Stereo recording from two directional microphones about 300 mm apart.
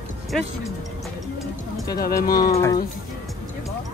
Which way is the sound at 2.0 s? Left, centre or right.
Left.